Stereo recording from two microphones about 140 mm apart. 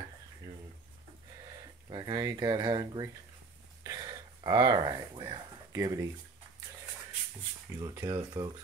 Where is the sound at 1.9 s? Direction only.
30° right (ahead or behind).